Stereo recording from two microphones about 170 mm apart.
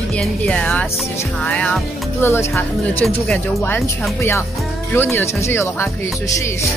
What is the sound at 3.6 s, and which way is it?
Speech, 15° left (ahead or behind).